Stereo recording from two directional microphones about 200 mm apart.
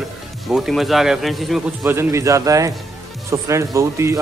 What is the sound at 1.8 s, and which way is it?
A man's voice, 15° right (ahead or behind).